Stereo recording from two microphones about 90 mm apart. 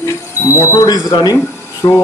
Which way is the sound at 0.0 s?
30° left (ahead or behind).